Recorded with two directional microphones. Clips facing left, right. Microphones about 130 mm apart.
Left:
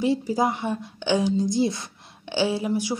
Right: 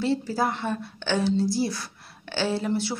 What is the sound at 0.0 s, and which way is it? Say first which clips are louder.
Speech: left 3 dB; 15° left (ahead or behind).